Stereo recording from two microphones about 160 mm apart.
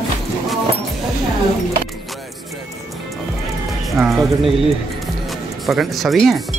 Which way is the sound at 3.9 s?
Centre (ahead or behind).